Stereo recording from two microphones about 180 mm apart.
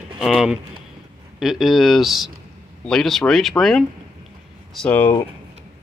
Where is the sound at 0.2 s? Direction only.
Centre (ahead or behind).